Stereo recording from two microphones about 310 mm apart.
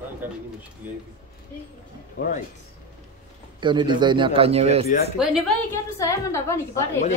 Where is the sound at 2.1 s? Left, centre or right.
Left.